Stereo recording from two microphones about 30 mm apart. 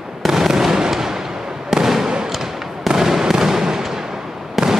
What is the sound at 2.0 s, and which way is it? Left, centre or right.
Fireworks, right.